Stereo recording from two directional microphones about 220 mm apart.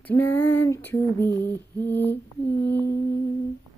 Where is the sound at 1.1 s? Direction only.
10° left (ahead or behind).